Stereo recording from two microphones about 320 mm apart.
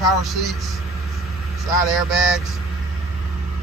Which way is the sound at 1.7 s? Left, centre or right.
Centre.